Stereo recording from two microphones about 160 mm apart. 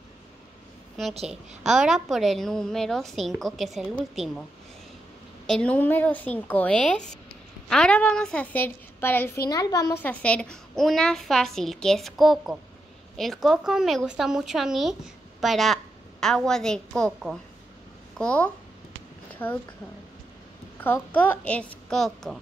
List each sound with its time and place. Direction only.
1.3 s a woman's voice: 5° right (ahead or behind)
5.5 s a woman's voice: 5° left (ahead or behind); by 9.9 s 20° left (ahead or behind)
10.0 s a woman's voice: 10° left (ahead or behind)
20.8 s a woman's voice: 10° left (ahead or behind)